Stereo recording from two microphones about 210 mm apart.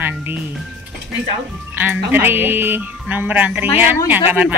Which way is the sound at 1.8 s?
10° right (ahead or behind).